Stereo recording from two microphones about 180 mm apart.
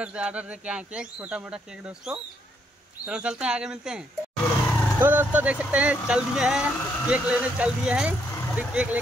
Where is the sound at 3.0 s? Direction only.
5° right (ahead or behind).